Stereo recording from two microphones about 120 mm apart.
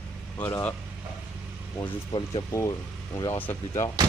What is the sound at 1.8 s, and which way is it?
Speech, 40° left (ahead or behind).